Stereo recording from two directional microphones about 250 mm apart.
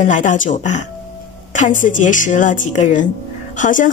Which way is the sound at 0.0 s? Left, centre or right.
Left.